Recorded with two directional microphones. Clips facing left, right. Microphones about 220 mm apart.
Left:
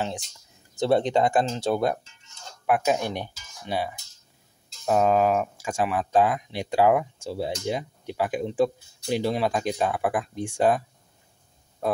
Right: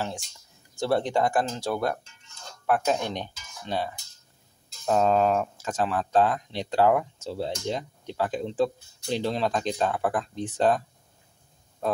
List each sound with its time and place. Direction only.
0.7 s speech: 20° left (ahead or behind)